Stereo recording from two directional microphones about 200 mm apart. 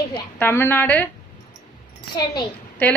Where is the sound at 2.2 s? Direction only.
15° left (ahead or behind).